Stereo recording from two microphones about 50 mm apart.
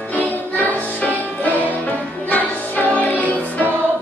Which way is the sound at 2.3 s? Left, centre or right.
Left.